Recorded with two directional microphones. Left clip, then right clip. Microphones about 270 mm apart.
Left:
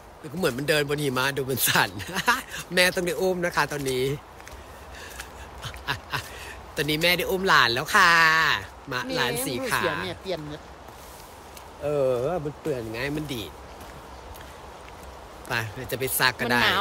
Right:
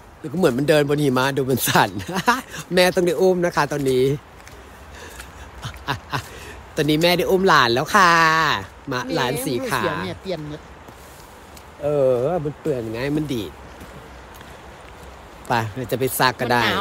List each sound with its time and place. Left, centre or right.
0.4 s speech: centre
10.0 s speech: centre
11.8 s speech: centre
15.4 s speech: centre